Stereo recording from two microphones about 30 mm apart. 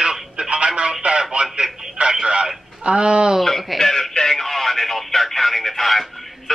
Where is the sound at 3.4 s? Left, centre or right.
Centre.